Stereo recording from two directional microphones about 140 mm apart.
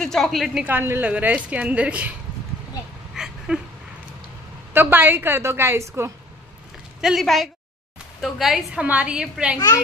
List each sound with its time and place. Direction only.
0.0 s a woman's voice: centre (ahead or behind)
0.7 s a woman's voice: 15° right (ahead or behind)
3.2 s a sound: 5° right (ahead or behind)
4.7 s a woman's voice: 15° right (ahead or behind)
7.0 s a woman's voice: centre (ahead or behind)